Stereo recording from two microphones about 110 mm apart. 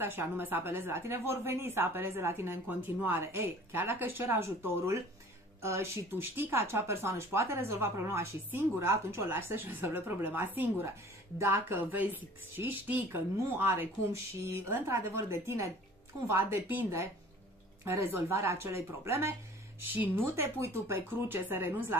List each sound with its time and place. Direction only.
0.0 s a woman's voice: 20° right (ahead or behind)